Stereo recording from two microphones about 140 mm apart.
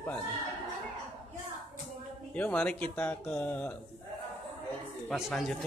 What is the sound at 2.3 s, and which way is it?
Speech, 10° left (ahead or behind).